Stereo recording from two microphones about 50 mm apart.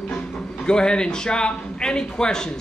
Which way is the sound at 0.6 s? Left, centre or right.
Centre.